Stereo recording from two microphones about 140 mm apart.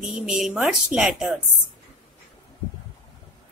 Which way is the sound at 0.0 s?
5° right (ahead or behind).